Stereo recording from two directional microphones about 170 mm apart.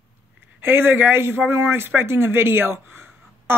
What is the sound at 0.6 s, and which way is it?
A woman's voice, 15° right (ahead or behind).